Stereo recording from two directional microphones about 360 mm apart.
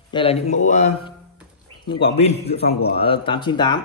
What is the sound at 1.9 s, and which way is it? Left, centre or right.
A man's voice, centre.